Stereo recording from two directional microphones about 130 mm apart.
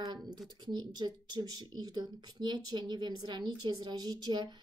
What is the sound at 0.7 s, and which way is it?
Speech, 35° right (ahead or behind).